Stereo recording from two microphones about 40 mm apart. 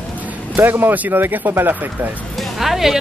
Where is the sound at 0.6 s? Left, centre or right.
Right.